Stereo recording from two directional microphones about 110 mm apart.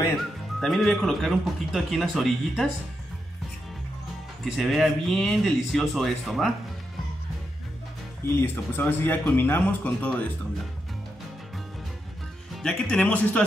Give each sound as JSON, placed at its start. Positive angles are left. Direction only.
{"t": 0.6, "sound": "speech", "side_deg": 5}
{"t": 4.5, "sound": "speech", "side_deg": 0}
{"t": 8.4, "sound": "speech", "side_deg": 20}
{"t": 12.6, "sound": "speech", "side_deg": 10}